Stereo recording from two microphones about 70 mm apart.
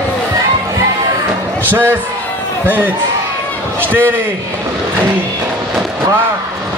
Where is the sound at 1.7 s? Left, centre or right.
Right.